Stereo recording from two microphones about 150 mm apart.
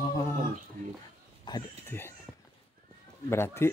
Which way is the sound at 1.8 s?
15° left (ahead or behind).